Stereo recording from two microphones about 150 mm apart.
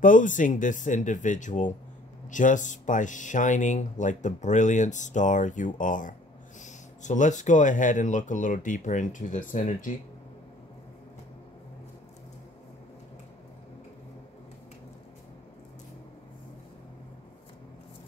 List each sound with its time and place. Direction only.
0.0 s speech: 60° left (ahead or behind)